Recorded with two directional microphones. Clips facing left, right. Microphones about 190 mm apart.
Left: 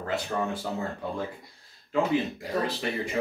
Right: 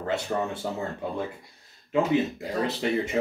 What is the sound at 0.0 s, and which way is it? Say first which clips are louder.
Speech: right 2 dB; 25° right (ahead or behind).